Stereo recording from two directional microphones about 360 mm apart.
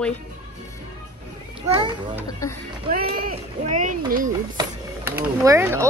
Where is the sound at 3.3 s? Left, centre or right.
Centre.